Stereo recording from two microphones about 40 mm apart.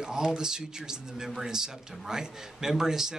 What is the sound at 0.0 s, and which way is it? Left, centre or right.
A man's voice, centre.